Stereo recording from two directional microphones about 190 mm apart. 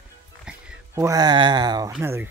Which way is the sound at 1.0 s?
20° right (ahead or behind).